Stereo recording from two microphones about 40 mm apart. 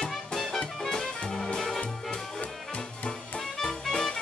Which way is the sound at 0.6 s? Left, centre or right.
Left.